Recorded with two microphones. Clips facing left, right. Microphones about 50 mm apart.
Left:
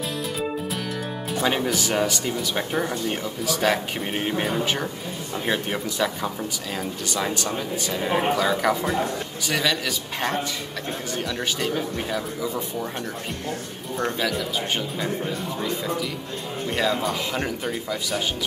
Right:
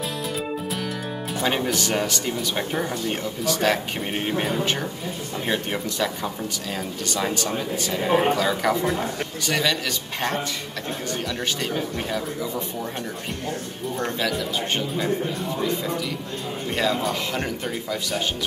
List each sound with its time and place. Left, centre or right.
1.3 s a man's voice: centre
11.6 s a man's voice: centre
13.9 s a man's voice: centre
15.6 s a man's voice: centre